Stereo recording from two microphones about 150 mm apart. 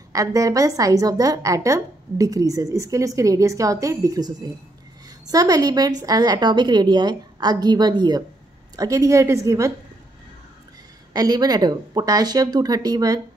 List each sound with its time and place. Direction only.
0.1 s a woman's voice: 25° right (ahead or behind)
11.1 s a woman's voice: 25° right (ahead or behind)